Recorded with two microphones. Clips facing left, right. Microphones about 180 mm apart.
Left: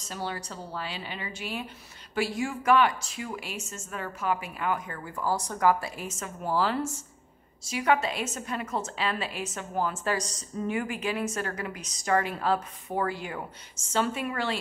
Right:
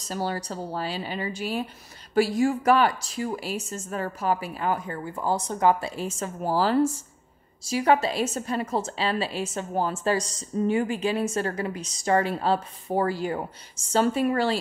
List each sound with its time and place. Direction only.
0.0 s a woman's voice: 40° right (ahead or behind)